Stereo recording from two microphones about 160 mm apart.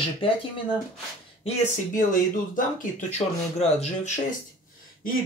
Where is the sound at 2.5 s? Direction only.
55° left (ahead or behind).